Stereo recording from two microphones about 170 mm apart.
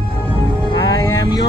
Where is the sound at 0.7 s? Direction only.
25° left (ahead or behind).